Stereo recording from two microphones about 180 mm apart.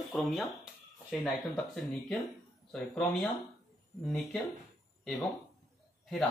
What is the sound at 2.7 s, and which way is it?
Speech, 5° left (ahead or behind).